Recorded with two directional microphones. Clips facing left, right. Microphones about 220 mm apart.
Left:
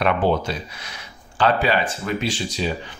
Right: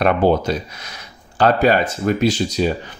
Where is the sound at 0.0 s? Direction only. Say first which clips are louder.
Right 4 dB; 40° right (ahead or behind).